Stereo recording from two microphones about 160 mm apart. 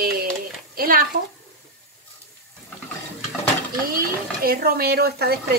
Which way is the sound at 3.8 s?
65° right (ahead or behind).